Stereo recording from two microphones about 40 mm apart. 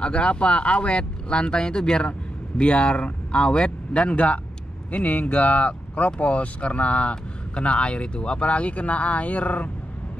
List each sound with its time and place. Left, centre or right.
0.0 s speech: left